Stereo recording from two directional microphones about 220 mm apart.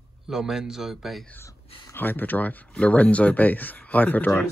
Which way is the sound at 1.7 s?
20° left (ahead or behind).